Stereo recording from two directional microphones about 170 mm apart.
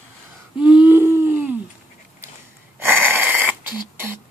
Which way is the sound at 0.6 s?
5° right (ahead or behind).